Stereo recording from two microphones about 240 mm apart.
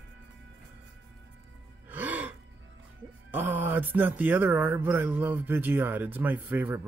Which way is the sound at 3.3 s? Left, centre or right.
Centre.